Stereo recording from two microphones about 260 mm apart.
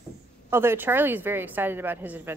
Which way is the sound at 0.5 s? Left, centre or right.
Centre.